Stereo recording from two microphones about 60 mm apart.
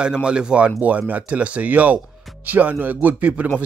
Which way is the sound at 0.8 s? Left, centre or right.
Right.